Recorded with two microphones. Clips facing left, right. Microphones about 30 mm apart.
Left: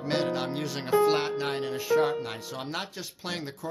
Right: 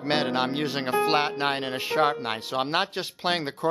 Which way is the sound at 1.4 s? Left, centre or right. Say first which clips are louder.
Right 3 dB; right.